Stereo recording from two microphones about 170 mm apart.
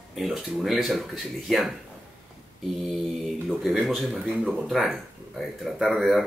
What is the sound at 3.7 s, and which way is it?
Speech, centre (ahead or behind).